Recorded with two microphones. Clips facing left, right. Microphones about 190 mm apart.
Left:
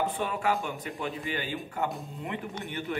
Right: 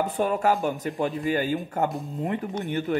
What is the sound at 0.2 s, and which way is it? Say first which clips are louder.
Speech: right 6 dB; 45° right (ahead or behind).